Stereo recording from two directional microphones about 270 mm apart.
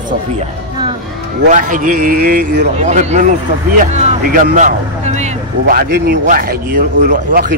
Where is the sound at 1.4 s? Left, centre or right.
Right.